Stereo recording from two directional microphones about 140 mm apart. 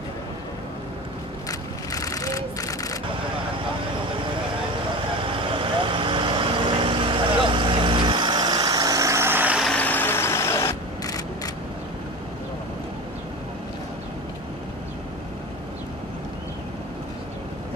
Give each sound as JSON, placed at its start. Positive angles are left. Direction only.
{"t": 1.9, "sound": "vehicle", "side_deg": 25}
{"t": 5.5, "sound": "vehicle", "side_deg": -40}
{"t": 9.7, "sound": "vehicle", "side_deg": 10}